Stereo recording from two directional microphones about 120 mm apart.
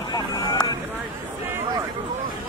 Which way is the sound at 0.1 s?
30° left (ahead or behind).